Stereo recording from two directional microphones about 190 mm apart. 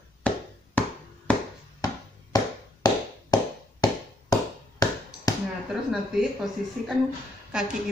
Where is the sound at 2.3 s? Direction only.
20° left (ahead or behind).